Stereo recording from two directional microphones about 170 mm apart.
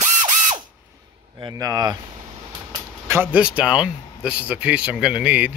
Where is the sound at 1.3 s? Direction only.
20° right (ahead or behind).